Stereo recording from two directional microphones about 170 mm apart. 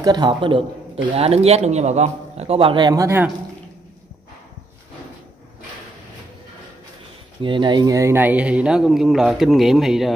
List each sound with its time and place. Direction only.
0.0 s a man's voice: 25° right (ahead or behind)
7.4 s speech: 30° right (ahead or behind); by 10.1 s centre (ahead or behind)